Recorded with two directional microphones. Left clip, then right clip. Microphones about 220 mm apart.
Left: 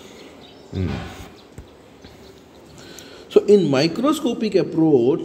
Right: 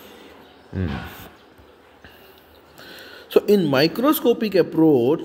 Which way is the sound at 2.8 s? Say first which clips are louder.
Right 1 dB; 15° right (ahead or behind).